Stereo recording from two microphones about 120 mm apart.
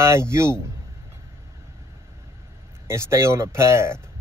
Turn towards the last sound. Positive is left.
turn(degrees=-20)  # may be behind; listen again after turning